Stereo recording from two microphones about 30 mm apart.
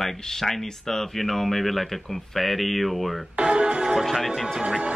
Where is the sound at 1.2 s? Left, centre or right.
Centre.